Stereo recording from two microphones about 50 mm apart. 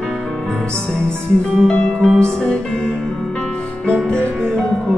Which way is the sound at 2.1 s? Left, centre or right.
Centre.